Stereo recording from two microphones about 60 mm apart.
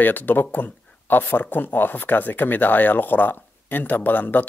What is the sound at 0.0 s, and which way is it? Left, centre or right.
Speech, left.